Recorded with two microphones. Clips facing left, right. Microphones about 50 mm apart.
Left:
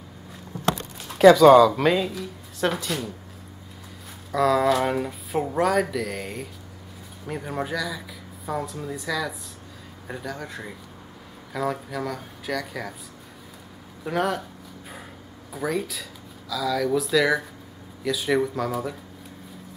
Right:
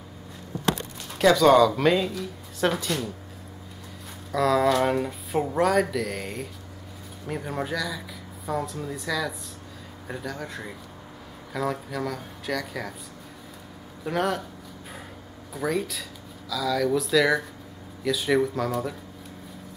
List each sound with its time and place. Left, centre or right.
0.9 s speech: centre
4.3 s speech: centre
14.0 s speech: centre
15.5 s speech: centre